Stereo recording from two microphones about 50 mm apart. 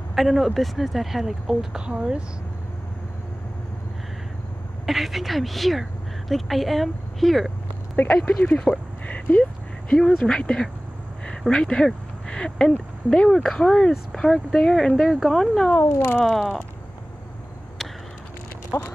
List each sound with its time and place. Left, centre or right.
0.1 s speech: centre
1.9 s speech: right
4.8 s a woman's voice: centre
8.1 s speech: centre
15.8 s cat: left
16.3 s speech: centre
18.7 s speech: left